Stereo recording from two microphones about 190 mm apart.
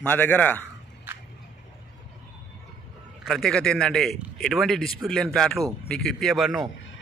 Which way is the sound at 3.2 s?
Centre (ahead or behind).